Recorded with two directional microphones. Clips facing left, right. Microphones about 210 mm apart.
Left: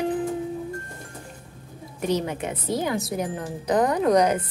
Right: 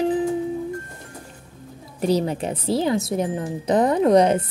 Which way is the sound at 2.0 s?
35° right (ahead or behind).